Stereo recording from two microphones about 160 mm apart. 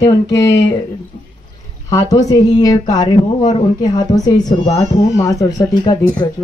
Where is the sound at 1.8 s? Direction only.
20° left (ahead or behind).